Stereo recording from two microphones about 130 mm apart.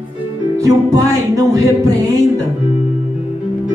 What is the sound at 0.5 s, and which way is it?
Music, 25° right (ahead or behind).